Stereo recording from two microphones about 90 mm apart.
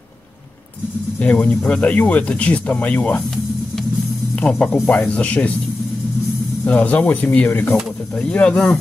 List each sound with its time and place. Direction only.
1.2 s speech: 15° left (ahead or behind)
4.4 s speech: 15° left (ahead or behind)
6.6 s speech: 15° left (ahead or behind)